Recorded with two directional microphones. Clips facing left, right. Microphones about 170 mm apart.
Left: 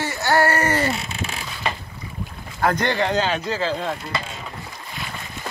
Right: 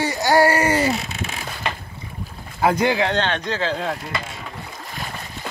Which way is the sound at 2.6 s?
10° right (ahead or behind).